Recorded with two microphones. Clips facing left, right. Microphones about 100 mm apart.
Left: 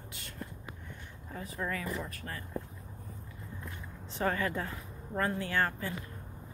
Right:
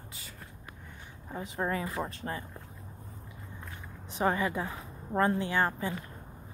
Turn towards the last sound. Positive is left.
turn(degrees=-20)  # may be behind; listen again after turning